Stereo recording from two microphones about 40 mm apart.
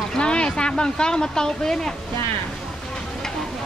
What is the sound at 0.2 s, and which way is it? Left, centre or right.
Speech, left.